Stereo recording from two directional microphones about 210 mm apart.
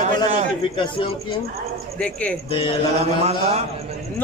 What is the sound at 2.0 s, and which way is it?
Speech, 5° left (ahead or behind).